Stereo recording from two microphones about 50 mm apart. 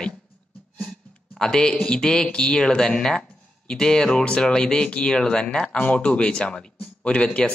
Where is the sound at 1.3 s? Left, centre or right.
Centre.